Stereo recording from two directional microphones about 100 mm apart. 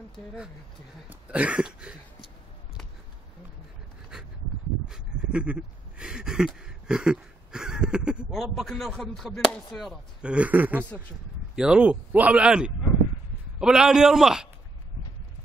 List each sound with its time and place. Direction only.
1.3 s speech: 10° right (ahead or behind)
4.8 s dog: 10° right (ahead or behind)
8.3 s chop: centre (ahead or behind)
10.2 s speech: 15° right (ahead or behind)
13.6 s chop: 5° right (ahead or behind)